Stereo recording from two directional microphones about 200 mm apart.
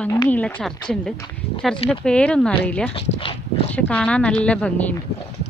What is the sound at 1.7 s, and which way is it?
Speech, 30° left (ahead or behind).